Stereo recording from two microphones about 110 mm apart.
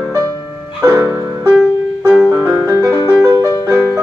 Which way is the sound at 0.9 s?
30° right (ahead or behind).